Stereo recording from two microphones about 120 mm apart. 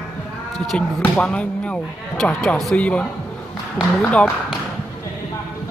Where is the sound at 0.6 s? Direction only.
5° left (ahead or behind).